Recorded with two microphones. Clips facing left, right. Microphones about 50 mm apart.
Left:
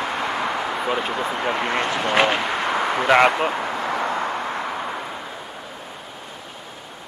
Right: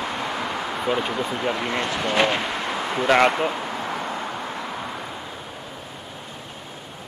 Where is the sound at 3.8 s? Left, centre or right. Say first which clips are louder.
Left 5 dB; left.